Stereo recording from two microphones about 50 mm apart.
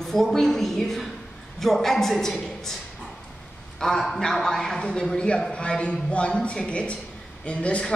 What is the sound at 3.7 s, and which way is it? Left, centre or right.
A man's voice, centre.